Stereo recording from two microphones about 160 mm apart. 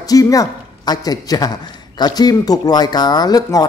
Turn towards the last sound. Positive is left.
turn(degrees=25)  # may be behind; listen again after turning